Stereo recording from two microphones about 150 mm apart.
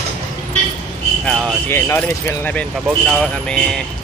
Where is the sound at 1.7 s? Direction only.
15° left (ahead or behind).